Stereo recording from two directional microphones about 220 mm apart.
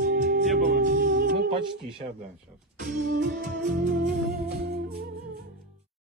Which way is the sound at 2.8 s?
50° right (ahead or behind).